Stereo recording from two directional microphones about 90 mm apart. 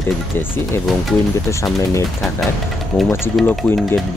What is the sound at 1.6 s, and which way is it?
Speech, 35° left (ahead or behind).